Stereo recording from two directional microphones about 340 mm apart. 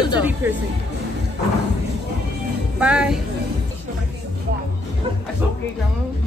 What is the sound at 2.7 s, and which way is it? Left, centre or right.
Music, centre.